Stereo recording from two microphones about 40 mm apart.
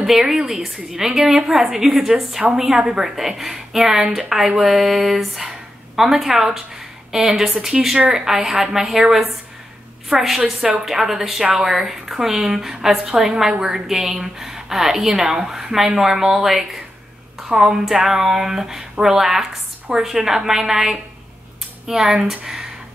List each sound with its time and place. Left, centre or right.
0.0 s a woman's voice: centre
10.3 s speech: centre